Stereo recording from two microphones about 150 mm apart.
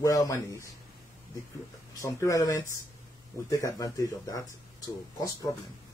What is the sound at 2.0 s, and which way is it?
Speech, 20° left (ahead or behind).